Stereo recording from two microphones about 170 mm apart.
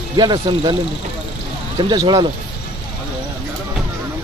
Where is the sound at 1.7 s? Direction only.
25° right (ahead or behind).